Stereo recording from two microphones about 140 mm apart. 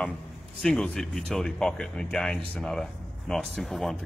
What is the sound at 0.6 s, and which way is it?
Speech, 5° left (ahead or behind).